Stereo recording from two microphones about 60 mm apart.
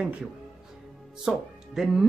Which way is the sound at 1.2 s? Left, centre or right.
Centre.